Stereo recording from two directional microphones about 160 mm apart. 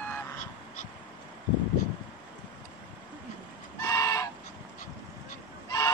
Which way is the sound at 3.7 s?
20° left (ahead or behind).